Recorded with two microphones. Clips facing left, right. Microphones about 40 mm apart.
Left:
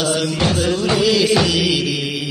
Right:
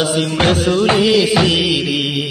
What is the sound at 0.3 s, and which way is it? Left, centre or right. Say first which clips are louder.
Music: right 4 dB; right.